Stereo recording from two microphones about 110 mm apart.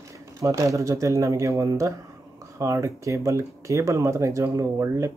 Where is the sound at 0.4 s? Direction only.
30° right (ahead or behind).